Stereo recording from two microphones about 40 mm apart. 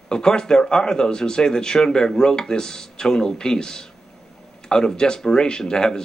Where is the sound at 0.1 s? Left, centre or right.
Centre.